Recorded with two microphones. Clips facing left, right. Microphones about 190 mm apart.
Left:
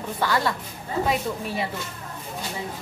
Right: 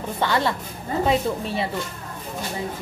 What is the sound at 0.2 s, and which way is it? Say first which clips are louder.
Speech: right 2 dB; 25° right (ahead or behind).